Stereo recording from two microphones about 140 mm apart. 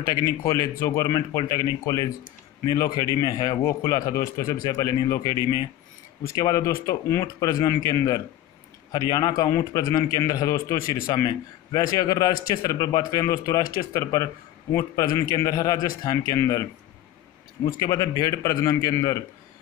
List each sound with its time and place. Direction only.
0.0 s a man's voice: 25° left (ahead or behind)
17.7 s a man's voice: 30° left (ahead or behind)